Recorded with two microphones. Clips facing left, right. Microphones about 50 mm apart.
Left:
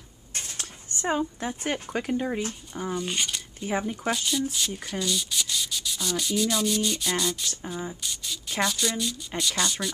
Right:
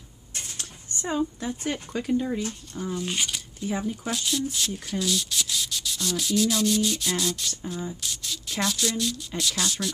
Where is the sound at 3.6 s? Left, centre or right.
Left.